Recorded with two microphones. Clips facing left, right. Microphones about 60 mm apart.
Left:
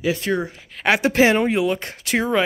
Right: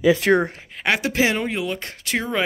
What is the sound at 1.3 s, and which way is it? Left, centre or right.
Speech, centre.